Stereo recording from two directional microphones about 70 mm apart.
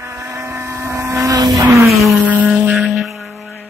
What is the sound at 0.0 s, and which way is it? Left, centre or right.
Vehicle, right.